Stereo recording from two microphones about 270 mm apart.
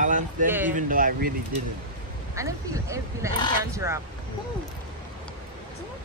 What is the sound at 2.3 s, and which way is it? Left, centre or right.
Speech, centre.